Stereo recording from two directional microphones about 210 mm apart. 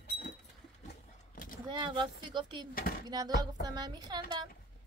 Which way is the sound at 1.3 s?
40° left (ahead or behind).